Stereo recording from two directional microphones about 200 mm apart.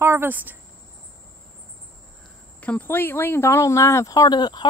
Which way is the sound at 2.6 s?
10° left (ahead or behind).